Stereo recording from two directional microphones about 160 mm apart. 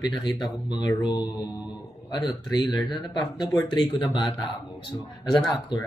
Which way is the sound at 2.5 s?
25° left (ahead or behind).